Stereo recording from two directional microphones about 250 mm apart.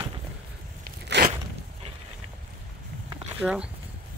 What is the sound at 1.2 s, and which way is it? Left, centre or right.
Crunch, right.